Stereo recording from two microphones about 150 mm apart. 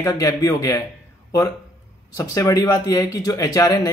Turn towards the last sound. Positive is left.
turn(degrees=20)  # may be behind; listen again after turning